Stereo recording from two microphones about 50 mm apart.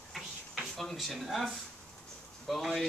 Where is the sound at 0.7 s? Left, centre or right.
Centre.